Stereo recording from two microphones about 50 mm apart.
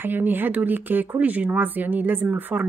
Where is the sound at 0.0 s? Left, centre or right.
Right.